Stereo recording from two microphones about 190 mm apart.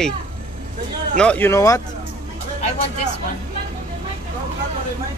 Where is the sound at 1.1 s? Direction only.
5° left (ahead or behind).